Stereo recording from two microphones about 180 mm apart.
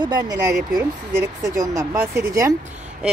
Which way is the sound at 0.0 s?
20° right (ahead or behind).